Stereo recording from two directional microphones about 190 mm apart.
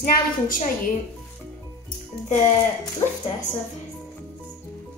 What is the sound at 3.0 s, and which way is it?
Speech, 20° left (ahead or behind).